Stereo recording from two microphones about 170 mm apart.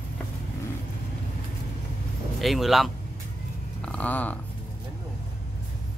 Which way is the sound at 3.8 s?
10° left (ahead or behind).